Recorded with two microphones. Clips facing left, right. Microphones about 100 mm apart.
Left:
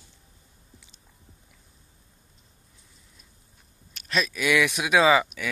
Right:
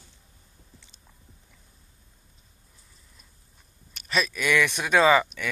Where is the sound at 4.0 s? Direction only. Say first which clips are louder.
Even; centre (ahead or behind).